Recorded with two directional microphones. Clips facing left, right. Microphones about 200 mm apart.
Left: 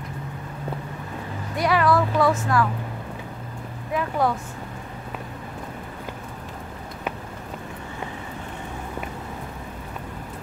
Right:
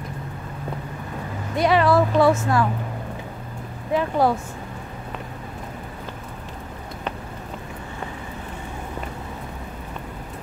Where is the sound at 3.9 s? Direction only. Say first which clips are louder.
Right 4 dB; 30° right (ahead or behind).